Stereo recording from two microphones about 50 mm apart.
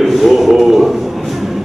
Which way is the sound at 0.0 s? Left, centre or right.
Centre.